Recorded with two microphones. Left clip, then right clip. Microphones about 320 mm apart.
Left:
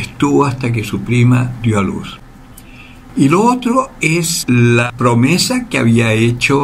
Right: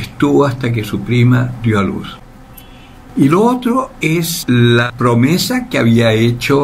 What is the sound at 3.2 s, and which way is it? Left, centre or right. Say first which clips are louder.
Speech: even; centre.